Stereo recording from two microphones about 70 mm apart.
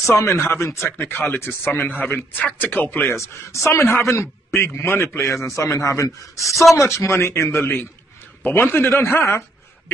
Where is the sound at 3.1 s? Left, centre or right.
Left.